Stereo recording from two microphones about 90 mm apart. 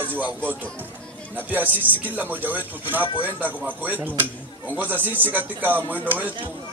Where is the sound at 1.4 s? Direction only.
20° right (ahead or behind).